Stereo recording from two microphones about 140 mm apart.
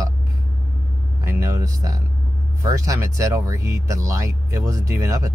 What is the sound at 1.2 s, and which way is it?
Vehicle, 20° right (ahead or behind).